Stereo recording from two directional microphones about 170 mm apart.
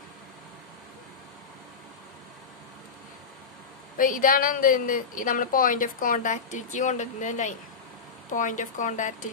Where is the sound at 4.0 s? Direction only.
55° left (ahead or behind).